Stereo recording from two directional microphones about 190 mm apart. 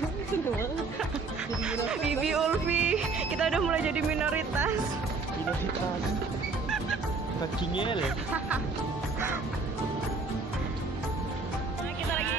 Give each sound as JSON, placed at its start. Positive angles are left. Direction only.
{"t": 1.7, "sound": "speech", "side_deg": -5}
{"t": 7.7, "sound": "speech", "side_deg": 25}